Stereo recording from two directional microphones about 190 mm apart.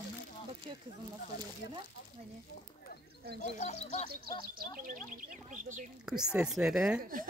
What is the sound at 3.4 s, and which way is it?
Speech, 40° left (ahead or behind).